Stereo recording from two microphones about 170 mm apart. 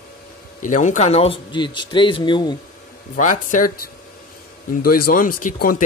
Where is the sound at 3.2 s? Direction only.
50° left (ahead or behind).